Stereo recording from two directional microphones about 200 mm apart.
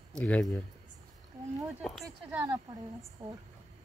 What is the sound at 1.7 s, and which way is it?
Speech, centre (ahead or behind).